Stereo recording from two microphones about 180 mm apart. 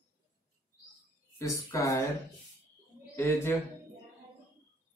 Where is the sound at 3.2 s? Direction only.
15° left (ahead or behind).